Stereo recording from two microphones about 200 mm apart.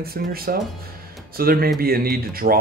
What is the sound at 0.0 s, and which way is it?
Speech, 50° right (ahead or behind).